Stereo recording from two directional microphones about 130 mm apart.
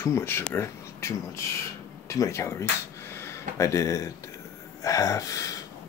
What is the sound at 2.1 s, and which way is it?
Speech, 20° left (ahead or behind).